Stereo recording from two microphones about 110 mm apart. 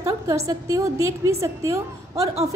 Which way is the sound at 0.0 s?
35° right (ahead or behind).